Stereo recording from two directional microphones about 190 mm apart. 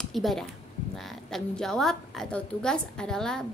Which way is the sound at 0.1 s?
Centre (ahead or behind).